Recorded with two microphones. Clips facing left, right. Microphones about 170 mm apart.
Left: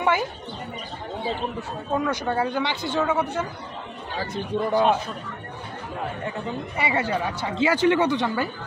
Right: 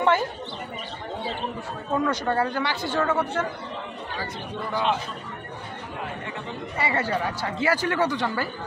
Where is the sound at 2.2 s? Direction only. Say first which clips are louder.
Even; 15° left (ahead or behind).